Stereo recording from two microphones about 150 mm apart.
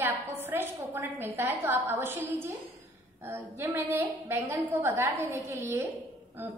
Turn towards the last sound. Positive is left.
turn(degrees=-15)  # may be behind; listen again after turning